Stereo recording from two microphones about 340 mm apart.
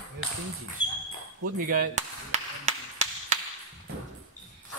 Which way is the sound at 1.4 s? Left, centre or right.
Right.